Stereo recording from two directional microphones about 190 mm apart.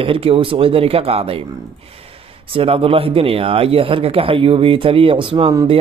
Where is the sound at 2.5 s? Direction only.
30° right (ahead or behind).